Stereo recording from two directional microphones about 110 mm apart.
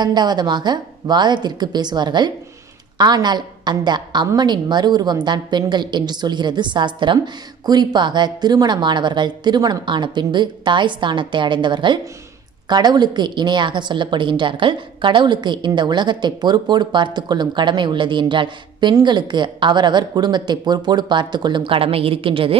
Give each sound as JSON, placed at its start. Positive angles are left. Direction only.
{"t": 0.0, "sound": "a woman's voice", "side_deg": -40}